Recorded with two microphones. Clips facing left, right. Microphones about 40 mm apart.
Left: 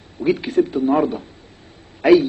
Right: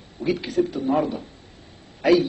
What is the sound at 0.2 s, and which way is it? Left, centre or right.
Speech, left.